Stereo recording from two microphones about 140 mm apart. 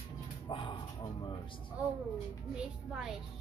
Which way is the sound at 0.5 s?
35° left (ahead or behind).